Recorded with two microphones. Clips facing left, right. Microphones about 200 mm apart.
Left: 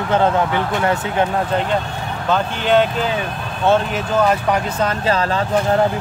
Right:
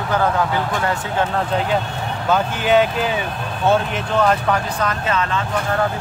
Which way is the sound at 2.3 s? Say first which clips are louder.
Even; 5° right (ahead or behind).